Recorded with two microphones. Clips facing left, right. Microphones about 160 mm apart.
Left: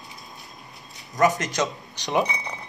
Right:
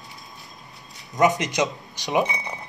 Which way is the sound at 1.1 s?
20° right (ahead or behind).